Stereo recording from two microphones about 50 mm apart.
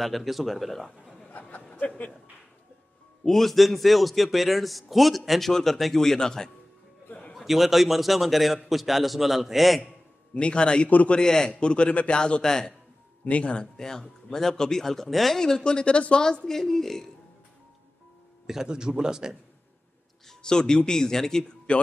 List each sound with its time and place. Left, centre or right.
0.0 s a man's voice: centre
3.3 s a man's voice: centre
7.3 s a man's voice: centre
10.3 s speech: left
10.9 s a man's voice: left
11.1 s speech: centre
13.2 s speech: left
13.7 s speech: centre
18.5 s a man's voice: centre
20.2 s speech: centre